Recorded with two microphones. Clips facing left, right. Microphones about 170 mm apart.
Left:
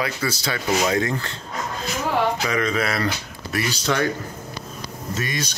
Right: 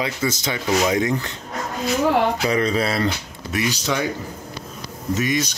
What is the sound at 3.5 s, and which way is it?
Speech, 15° right (ahead or behind).